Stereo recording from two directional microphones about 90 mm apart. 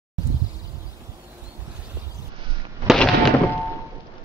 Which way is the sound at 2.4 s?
65° right (ahead or behind).